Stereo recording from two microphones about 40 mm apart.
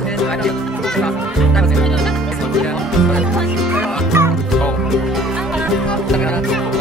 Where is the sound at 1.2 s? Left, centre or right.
Centre.